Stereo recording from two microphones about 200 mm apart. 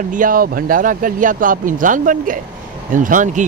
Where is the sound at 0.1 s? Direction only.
45° right (ahead or behind).